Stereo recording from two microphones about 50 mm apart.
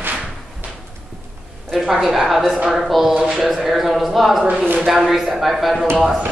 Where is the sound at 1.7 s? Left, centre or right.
Centre.